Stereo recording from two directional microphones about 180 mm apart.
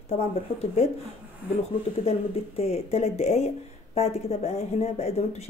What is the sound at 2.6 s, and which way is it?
Speech, 35° left (ahead or behind).